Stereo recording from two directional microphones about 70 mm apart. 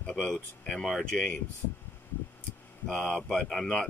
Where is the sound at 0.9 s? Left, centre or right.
Centre.